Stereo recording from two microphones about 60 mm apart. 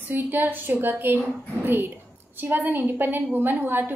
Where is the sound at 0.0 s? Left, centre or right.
Right.